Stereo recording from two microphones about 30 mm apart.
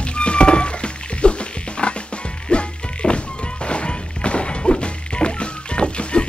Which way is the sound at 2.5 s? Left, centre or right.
Left.